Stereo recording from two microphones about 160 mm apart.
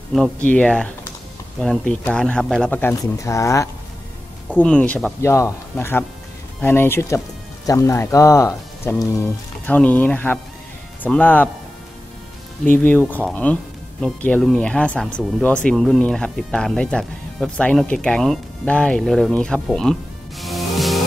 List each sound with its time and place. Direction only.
0.1 s speech: 5° left (ahead or behind)
4.6 s speech: 10° left (ahead or behind)
12.6 s speech: 10° left (ahead or behind)